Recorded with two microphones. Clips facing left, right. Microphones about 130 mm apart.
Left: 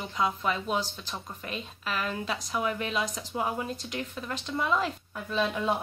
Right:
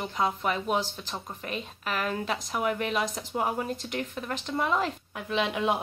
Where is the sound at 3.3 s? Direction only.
45° right (ahead or behind).